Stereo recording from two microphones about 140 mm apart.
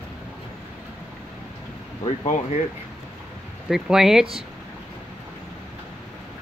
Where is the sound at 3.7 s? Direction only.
5° right (ahead or behind).